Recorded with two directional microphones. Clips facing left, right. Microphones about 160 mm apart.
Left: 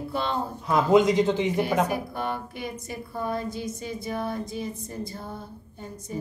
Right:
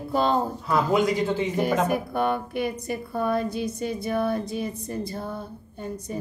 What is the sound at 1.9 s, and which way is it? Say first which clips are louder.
A woman's voice: right 5 dB; 60° right (ahead or behind).